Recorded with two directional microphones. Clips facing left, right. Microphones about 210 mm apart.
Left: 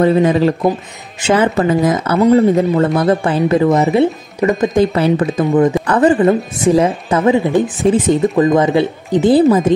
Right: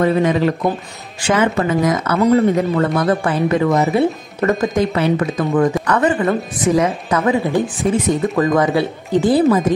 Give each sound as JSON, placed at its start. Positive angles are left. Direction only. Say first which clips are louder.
{"t": 0.0, "sound": "a woman's voice", "louder": "left 3 dB", "side_deg": 30}
{"t": 4.4, "sound": "speech", "louder": "left 2 dB", "side_deg": 5}
{"t": 4.7, "sound": "a woman's voice", "louder": "left 4 dB", "side_deg": 30}
{"t": 5.4, "sound": "speech", "louder": "left 4 dB", "side_deg": 20}
{"t": 5.9, "sound": "a woman's voice", "louder": "left 5 dB", "side_deg": 30}